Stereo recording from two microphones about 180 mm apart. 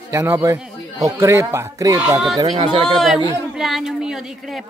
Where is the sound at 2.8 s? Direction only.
Centre (ahead or behind).